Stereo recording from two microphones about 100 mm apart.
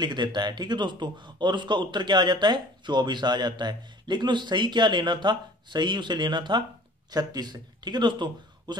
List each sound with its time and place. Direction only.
0.0 s a man's voice: 50° right (ahead or behind)